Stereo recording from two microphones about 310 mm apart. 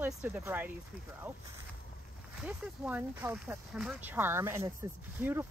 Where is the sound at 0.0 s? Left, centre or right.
Centre.